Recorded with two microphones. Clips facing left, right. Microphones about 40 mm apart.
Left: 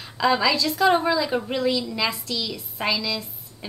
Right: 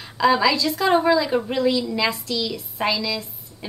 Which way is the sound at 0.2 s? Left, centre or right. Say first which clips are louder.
Right 3 dB; centre.